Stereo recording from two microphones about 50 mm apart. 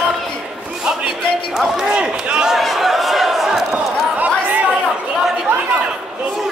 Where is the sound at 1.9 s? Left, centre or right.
Right.